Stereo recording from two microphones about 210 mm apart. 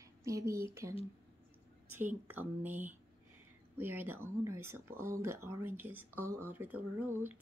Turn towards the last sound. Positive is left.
turn(degrees=-10)  # may be behind; listen again after turning